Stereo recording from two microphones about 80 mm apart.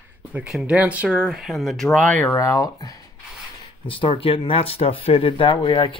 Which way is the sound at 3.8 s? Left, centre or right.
Left.